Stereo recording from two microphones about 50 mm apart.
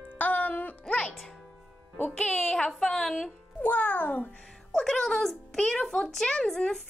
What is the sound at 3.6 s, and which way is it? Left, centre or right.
Speech, left.